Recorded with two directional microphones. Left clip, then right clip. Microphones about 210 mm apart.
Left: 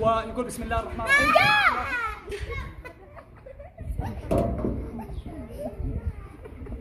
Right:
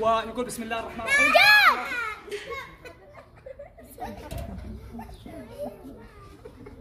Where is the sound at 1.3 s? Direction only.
50° right (ahead or behind).